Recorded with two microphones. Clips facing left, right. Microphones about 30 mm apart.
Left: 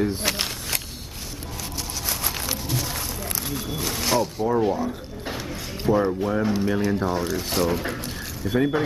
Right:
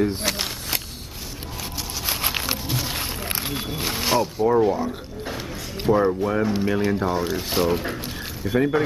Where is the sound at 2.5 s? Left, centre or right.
Right.